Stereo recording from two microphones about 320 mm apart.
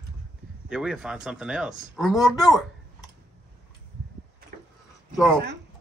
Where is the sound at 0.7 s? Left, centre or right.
Centre.